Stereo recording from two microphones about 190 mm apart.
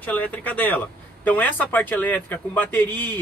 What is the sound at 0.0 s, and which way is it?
Speech, 10° left (ahead or behind).